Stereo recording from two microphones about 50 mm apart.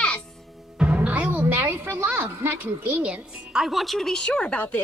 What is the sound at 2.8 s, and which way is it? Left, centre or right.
A woman's voice, centre.